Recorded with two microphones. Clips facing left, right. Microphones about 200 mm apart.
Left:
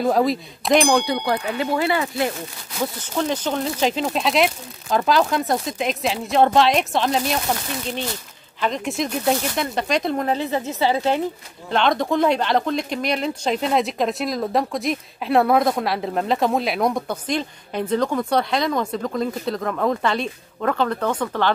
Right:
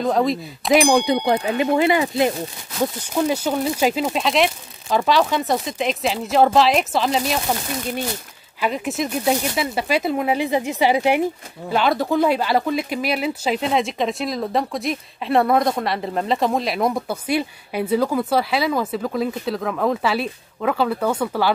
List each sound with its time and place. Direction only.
0.0 s speech: centre (ahead or behind)
1.2 s speech: 20° right (ahead or behind)